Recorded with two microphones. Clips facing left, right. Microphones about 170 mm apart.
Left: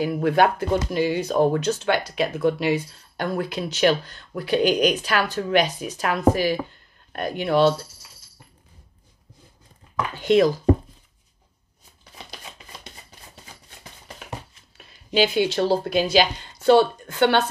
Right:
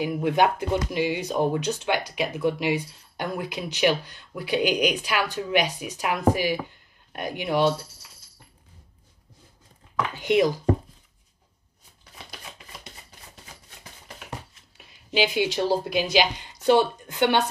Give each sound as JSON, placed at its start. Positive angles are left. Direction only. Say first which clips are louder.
{"t": 0.0, "sound": "speech", "louder": "left 3 dB", "side_deg": -15}
{"t": 10.1, "sound": "speech", "louder": "left 4 dB", "side_deg": -15}
{"t": 15.1, "sound": "speech", "louder": "left 3 dB", "side_deg": -15}